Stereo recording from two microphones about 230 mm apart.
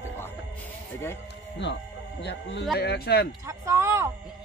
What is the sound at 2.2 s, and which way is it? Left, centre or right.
Speech, left.